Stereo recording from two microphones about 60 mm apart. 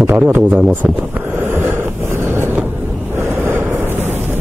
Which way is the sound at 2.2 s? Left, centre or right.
Right.